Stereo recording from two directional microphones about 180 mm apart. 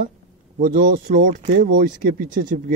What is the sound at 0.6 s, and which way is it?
Speech, 50° right (ahead or behind).